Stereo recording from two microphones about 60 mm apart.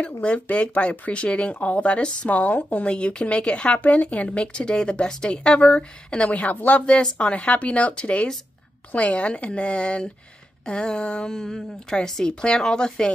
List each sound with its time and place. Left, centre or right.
0.2 s a woman's voice: left